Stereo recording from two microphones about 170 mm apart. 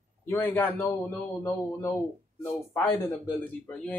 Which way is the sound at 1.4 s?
20° left (ahead or behind).